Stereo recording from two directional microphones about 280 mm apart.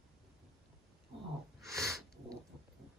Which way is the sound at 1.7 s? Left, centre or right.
Centre.